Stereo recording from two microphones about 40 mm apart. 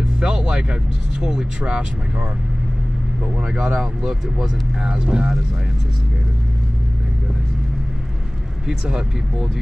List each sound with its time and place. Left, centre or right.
0.2 s music: centre
1.2 s speech: centre
3.3 s speech: right
3.8 s speech: centre
8.6 s speech: centre